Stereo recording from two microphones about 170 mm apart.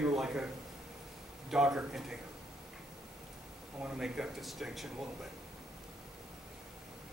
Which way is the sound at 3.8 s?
5° right (ahead or behind).